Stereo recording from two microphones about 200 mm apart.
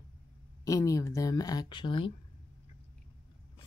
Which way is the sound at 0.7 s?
15° left (ahead or behind).